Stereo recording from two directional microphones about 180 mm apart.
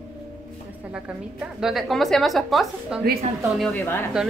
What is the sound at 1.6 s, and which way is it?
Speech, centre (ahead or behind).